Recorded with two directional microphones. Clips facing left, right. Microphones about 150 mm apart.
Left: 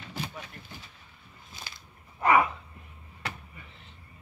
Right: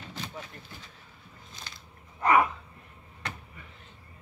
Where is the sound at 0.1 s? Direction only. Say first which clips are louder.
Left 3 dB; 10° left (ahead or behind).